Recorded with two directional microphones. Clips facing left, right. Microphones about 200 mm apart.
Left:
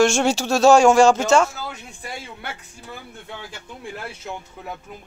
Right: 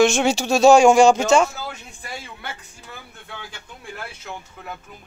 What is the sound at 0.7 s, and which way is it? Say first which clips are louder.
Speech: right 1 dB; 15° right (ahead or behind).